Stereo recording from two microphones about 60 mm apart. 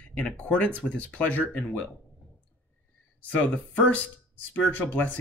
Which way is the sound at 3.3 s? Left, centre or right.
Left.